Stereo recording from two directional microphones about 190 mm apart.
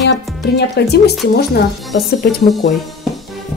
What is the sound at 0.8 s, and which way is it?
Speech, 60° left (ahead or behind).